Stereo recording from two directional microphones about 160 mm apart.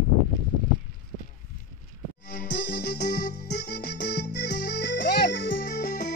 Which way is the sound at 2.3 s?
85° left.